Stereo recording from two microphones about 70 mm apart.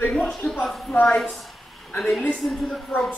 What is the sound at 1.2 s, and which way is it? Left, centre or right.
A woman's voice, centre.